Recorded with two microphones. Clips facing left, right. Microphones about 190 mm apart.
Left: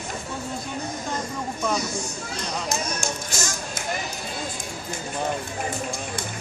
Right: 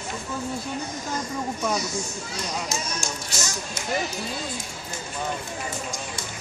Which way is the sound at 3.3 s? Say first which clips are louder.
Left 1 dB; 50° left (ahead or behind).